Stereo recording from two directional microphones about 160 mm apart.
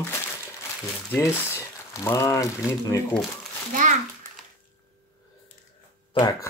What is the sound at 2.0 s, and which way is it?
Speech, 20° left (ahead or behind).